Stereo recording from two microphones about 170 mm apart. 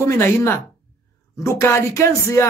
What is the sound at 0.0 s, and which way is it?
Speech, 15° left (ahead or behind).